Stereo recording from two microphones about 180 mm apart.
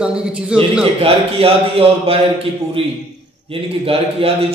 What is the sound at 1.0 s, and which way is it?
Speech, 30° right (ahead or behind).